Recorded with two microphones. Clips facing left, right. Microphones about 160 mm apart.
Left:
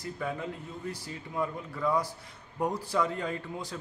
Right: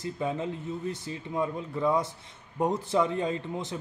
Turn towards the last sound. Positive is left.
turn(degrees=-20)  # may be behind; listen again after turning